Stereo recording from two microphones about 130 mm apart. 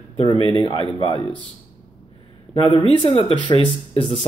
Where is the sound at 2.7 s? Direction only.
35° left (ahead or behind).